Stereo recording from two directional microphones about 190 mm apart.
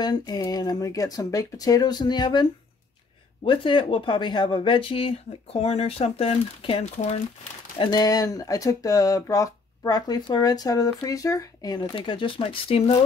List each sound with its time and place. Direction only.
0.0 s speech: 20° left (ahead or behind)
3.4 s speech: 25° left (ahead or behind)
7.8 s speech: 20° left (ahead or behind)